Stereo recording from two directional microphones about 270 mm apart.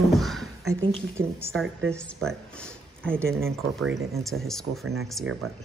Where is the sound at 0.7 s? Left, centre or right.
Right.